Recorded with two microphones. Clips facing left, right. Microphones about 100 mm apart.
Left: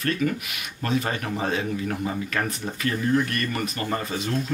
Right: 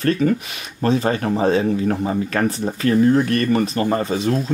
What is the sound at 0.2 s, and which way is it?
A man's voice, 35° right (ahead or behind).